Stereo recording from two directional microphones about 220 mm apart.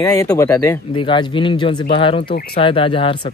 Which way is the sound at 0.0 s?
15° left (ahead or behind).